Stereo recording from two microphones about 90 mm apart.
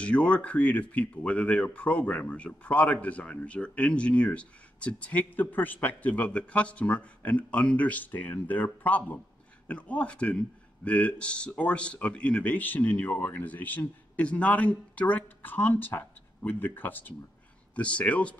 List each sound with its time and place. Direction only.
0.0 s speech: 15° left (ahead or behind)